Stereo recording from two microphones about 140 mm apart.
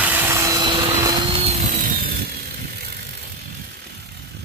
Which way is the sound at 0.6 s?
35° right (ahead or behind).